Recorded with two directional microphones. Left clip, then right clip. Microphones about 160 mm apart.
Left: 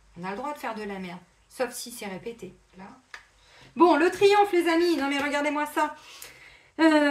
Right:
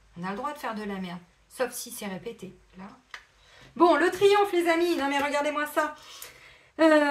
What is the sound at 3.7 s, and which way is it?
Speech, centre (ahead or behind).